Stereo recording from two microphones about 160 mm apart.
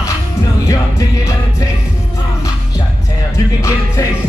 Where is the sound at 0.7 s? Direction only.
20° left (ahead or behind).